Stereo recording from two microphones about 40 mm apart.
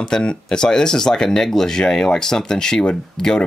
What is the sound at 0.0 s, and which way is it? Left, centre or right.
Speech, left.